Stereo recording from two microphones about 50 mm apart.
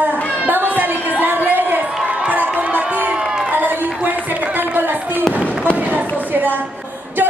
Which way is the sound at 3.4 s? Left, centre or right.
Right.